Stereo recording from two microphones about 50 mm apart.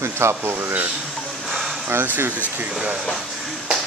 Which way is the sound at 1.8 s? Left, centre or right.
Right.